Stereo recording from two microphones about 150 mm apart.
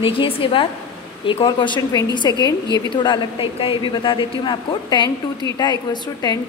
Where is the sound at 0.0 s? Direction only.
35° left (ahead or behind).